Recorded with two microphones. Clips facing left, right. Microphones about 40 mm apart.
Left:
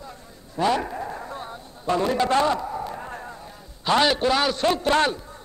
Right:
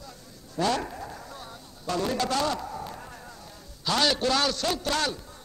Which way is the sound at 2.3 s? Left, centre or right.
Left.